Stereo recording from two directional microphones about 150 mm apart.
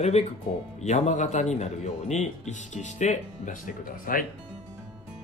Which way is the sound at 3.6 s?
70° left (ahead or behind).